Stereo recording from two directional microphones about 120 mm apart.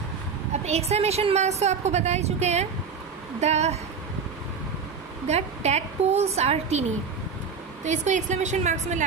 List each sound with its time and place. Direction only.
0.7 s a woman's voice: 60° right (ahead or behind)
5.2 s a woman's voice: 65° right (ahead or behind)
7.8 s a woman's voice: 80° right